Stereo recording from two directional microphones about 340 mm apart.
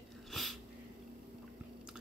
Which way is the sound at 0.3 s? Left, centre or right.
Centre.